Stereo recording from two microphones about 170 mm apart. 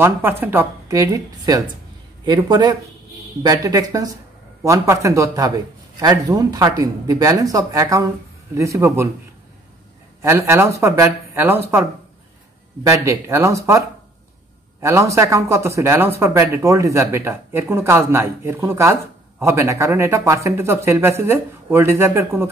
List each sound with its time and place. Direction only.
0.0 s speech: 15° right (ahead or behind)
10.2 s speech: 15° right (ahead or behind)
12.8 s speech: 15° right (ahead or behind)